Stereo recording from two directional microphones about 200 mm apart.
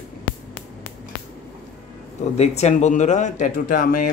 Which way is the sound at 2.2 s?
35° left (ahead or behind).